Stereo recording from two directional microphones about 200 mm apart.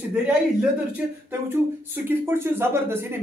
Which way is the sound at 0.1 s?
5° right (ahead or behind).